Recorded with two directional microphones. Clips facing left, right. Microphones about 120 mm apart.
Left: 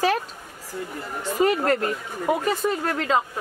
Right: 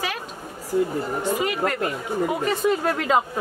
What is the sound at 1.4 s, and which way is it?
Speech, 40° left (ahead or behind).